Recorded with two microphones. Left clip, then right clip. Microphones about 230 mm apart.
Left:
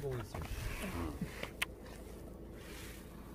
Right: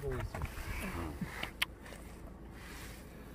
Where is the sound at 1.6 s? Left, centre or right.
Centre.